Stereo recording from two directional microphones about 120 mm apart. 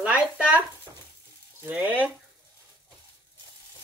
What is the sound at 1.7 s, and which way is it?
Speech, 15° right (ahead or behind).